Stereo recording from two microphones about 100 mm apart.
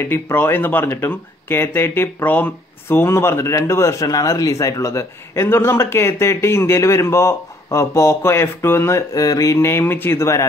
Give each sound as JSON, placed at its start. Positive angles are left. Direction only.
{"t": 0.0, "sound": "speech", "side_deg": 20}